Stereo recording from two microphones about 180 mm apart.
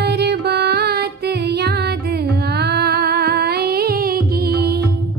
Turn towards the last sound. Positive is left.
turn(degrees=-65)  # may be behind; listen again after turning